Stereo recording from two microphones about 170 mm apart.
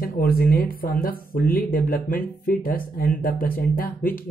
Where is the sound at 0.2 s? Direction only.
60° left (ahead or behind).